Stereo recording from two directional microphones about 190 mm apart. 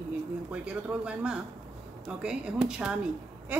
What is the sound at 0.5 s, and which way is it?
A woman's voice, 5° right (ahead or behind).